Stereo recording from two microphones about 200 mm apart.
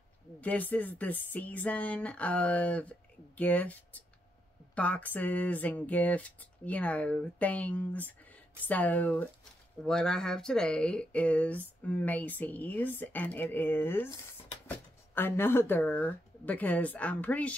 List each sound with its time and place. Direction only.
0.4 s speech: 10° left (ahead or behind)